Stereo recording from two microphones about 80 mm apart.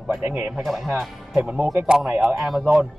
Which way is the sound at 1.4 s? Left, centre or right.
Centre.